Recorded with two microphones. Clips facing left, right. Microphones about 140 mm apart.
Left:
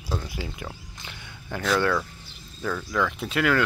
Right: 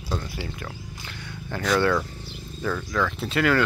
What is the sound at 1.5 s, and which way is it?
Speech, centre (ahead or behind).